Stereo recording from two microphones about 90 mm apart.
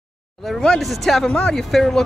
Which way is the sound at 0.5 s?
5° left (ahead or behind).